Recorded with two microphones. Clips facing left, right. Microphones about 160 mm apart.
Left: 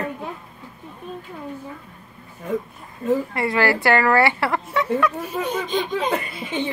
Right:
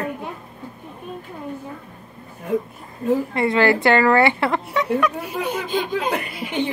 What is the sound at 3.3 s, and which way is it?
Speech, 20° right (ahead or behind).